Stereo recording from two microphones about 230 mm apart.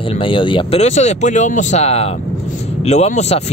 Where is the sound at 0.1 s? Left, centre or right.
Left.